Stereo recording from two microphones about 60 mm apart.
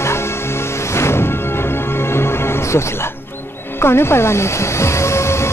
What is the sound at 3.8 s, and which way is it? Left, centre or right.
Speech, left.